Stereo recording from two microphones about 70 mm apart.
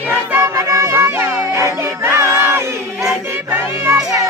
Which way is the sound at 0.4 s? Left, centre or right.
Right.